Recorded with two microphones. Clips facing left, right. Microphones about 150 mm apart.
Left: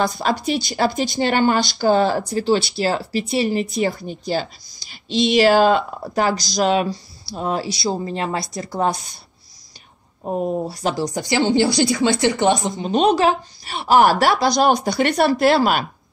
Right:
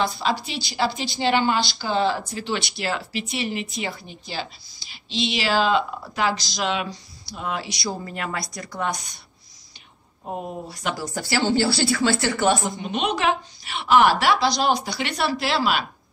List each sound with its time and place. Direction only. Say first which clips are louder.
0.0 s a woman's voice: left 4 dB; 45° left (ahead or behind); by 9.2 s 30° left (ahead or behind)
10.7 s speech: left 7 dB; 35° left (ahead or behind)
11.1 s speech: left 2 dB; 15° left (ahead or behind)
12.8 s a woman's voice: left 9 dB; 35° left (ahead or behind)